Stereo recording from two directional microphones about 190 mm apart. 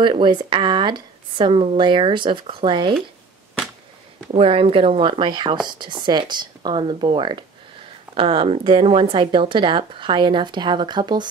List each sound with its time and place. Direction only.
0.0 s speech: 25° right (ahead or behind)
4.3 s speech: 30° right (ahead or behind)